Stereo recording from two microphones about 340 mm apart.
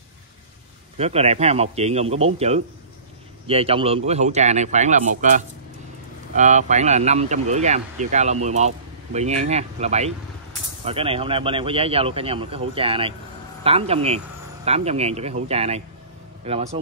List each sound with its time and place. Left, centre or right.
0.9 s speech: centre
6.3 s speech: right